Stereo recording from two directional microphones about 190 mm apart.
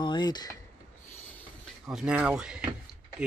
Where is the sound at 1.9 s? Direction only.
5° right (ahead or behind).